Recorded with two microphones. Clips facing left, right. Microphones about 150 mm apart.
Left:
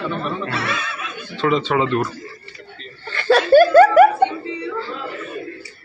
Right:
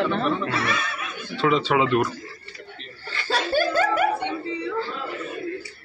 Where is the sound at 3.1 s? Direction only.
60° left (ahead or behind).